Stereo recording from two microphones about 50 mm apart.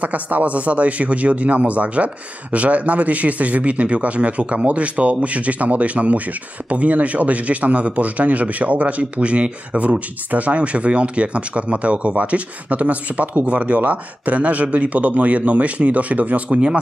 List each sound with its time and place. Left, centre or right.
0.0 s speech: right